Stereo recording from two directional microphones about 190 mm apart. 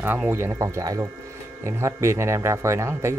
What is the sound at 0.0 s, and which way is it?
Speech, 10° right (ahead or behind).